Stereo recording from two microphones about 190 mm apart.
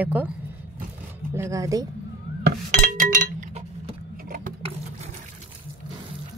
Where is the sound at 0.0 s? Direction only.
10° right (ahead or behind).